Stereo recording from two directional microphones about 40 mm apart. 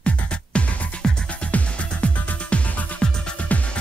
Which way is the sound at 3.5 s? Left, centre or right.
Left.